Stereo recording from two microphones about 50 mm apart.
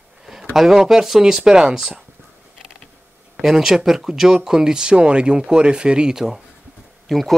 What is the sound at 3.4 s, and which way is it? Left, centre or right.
Speech, centre.